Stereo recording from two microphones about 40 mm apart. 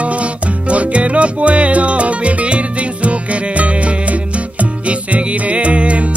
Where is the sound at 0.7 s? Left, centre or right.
Right.